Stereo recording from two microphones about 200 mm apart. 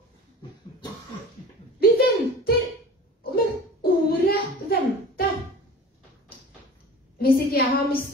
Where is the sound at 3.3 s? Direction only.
50° left (ahead or behind).